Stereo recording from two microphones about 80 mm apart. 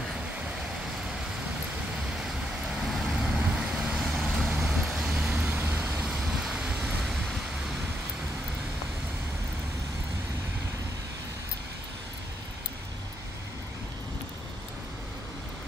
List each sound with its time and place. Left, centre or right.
2.2 s vehicle: centre
3.3 s vehicle: centre
5.5 s vehicle: right
5.8 s vehicle: centre